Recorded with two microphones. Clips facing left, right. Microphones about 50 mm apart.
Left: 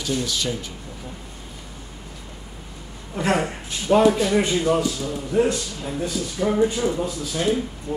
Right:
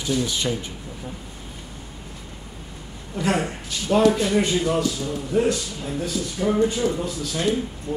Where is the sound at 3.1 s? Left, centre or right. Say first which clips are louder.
Left 1 dB; left.